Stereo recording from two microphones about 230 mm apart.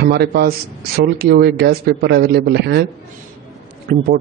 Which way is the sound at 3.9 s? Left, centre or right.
Right.